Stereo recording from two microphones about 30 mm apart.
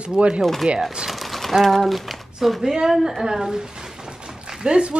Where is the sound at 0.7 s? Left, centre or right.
Right.